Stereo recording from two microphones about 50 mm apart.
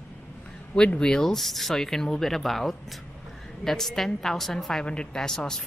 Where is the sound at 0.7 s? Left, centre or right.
Centre.